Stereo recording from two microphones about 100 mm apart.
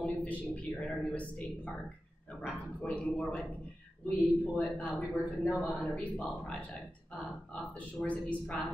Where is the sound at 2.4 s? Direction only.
10° left (ahead or behind).